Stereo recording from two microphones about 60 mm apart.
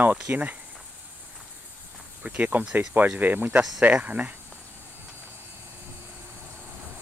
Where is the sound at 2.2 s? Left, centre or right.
Right.